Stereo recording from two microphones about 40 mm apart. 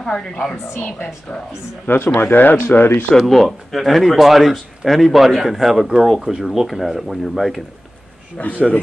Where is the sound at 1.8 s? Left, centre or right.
Left.